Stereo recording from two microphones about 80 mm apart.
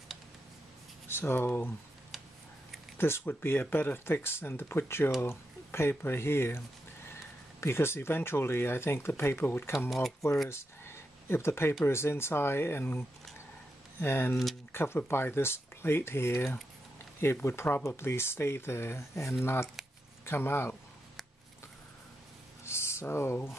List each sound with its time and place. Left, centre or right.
1.0 s speech: left
3.0 s speech: left
7.6 s speech: left
9.8 s speech: centre
10.5 s a sound: left
11.8 s speech: left
14.3 s speech: centre
14.7 s speech: left
22.7 s a sound: left